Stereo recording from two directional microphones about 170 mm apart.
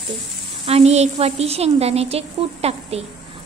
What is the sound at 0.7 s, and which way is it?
A woman's voice, 35° right (ahead or behind).